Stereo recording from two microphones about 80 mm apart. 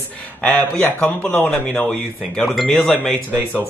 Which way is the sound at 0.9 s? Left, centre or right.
Left.